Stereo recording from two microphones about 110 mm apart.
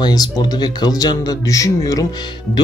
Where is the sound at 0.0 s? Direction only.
40° left (ahead or behind).